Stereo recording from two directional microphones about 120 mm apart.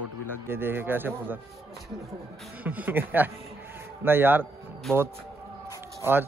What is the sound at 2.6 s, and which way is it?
Speech, 15° right (ahead or behind).